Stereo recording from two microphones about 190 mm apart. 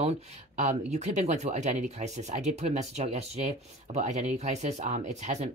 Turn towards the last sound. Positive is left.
turn(degrees=-35)  # may be behind; listen again after turning